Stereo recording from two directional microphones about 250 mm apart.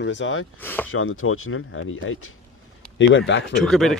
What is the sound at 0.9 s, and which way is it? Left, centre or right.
Speech, left.